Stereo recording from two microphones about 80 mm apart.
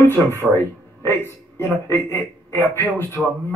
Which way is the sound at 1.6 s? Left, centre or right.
Left.